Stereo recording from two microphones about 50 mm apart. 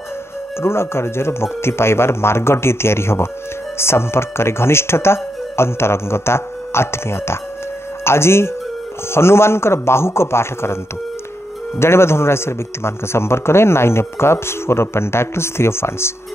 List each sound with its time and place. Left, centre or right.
0.6 s a man's voice: left
11.8 s a man's voice: left